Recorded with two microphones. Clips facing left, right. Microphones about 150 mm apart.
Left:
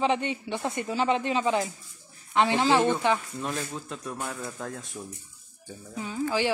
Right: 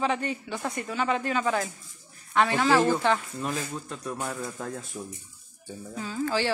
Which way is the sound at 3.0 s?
15° left (ahead or behind).